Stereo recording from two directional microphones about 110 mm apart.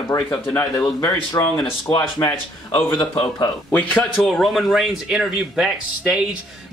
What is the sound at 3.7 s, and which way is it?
Speech, 10° left (ahead or behind).